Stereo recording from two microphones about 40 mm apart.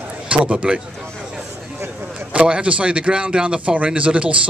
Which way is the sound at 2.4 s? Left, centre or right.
Right.